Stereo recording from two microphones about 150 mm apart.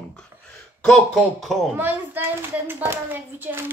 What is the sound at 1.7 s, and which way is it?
A woman's voice, 10° right (ahead or behind).